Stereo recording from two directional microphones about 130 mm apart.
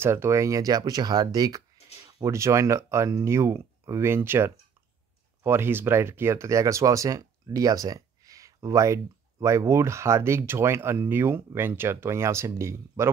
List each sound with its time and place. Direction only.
0.0 s speech: 20° right (ahead or behind)